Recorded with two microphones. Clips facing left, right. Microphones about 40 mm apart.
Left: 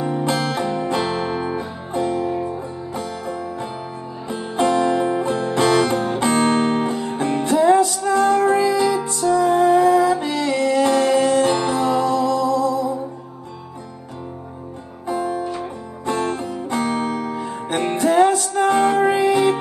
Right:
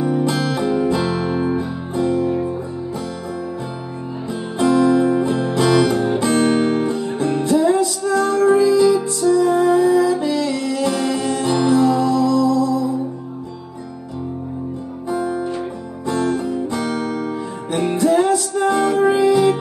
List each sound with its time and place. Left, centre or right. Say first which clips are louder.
0.2 s music: right 2 dB; left
4.3 s music: right 1 dB; left
7.5 s music: left 2 dB; left
8.8 s music: right 4 dB; left
15.0 s music: right 1 dB; left
18.0 s music: left 1 dB; left